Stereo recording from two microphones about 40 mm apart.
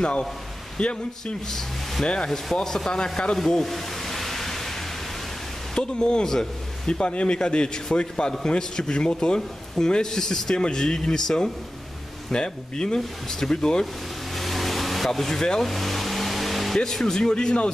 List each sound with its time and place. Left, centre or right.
0.0 s a man's voice: left
1.2 s speech: centre
2.0 s a man's voice: left
3.4 s a sound: centre
5.8 s a man's voice: left
6.9 s a man's voice: left
14.3 s vehicle: centre
15.1 s speech: centre
15.6 s car: centre
17.0 s a man's voice: centre